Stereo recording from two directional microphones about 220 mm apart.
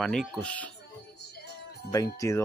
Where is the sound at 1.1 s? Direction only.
45° left (ahead or behind).